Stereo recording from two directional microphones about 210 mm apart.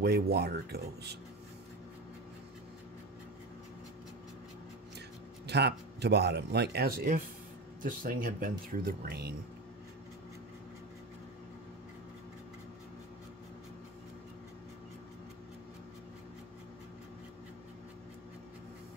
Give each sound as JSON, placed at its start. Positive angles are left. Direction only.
{"t": 0.0, "sound": "speech", "side_deg": -50}
{"t": 5.5, "sound": "speech", "side_deg": -55}